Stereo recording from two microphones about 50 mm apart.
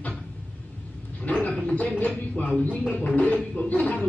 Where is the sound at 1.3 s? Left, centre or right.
Left.